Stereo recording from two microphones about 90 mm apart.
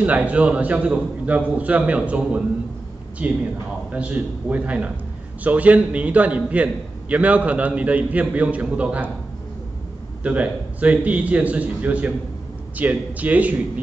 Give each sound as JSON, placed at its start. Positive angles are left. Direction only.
{"t": 0.0, "sound": "a man's voice", "side_deg": -15}
{"t": 10.2, "sound": "a man's voice", "side_deg": -15}